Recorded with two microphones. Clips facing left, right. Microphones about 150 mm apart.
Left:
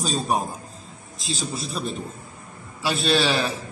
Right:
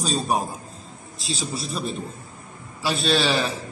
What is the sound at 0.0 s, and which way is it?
Speech, centre (ahead or behind).